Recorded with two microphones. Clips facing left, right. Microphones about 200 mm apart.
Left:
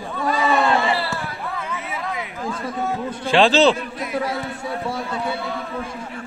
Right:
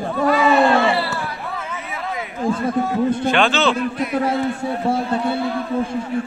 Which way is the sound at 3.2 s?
30° left (ahead or behind).